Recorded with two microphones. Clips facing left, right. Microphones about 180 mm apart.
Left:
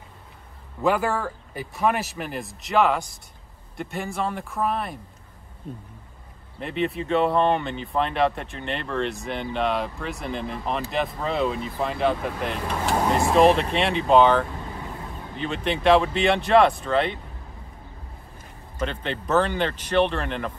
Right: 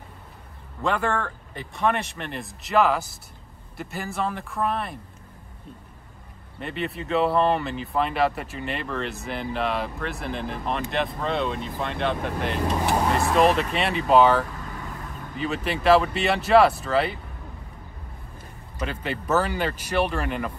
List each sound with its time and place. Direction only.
0.8 s speech: 5° left (ahead or behind)
6.6 s speech: centre (ahead or behind)
13.2 s speech: 30° left (ahead or behind)
13.7 s speech: centre (ahead or behind)
18.8 s speech: 5° right (ahead or behind)